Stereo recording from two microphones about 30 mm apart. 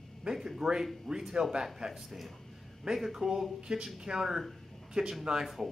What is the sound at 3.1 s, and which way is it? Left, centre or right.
Speech, centre.